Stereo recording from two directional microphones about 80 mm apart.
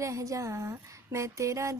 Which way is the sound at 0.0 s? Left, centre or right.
Right.